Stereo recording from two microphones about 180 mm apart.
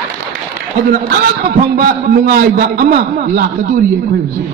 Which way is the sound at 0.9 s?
55° right (ahead or behind).